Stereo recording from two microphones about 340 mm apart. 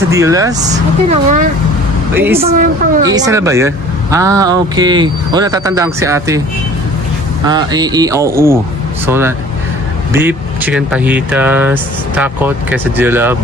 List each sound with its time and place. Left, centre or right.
0.1 s speech: centre
1.0 s speech: right
2.1 s speech: centre
7.4 s speech: centre